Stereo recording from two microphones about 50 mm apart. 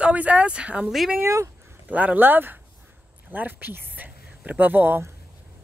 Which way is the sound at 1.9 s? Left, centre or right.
Right.